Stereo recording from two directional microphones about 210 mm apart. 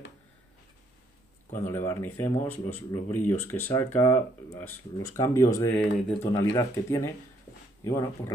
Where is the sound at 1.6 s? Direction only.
10° left (ahead or behind).